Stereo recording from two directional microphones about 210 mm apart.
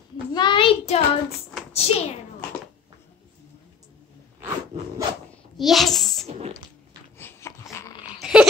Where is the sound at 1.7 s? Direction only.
30° left (ahead or behind).